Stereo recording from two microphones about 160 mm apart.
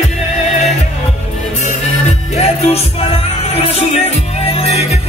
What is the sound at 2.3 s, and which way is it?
Music, 40° left (ahead or behind).